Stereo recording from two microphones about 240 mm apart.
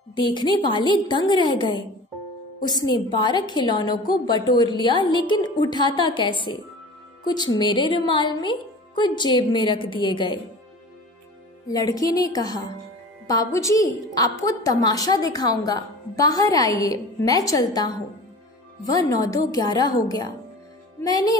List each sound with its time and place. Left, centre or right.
0.1 s a woman's voice: centre
11.7 s a woman's voice: centre
21.0 s a woman's voice: centre